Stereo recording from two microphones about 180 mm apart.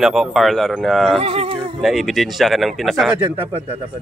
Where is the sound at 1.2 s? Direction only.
35° right (ahead or behind).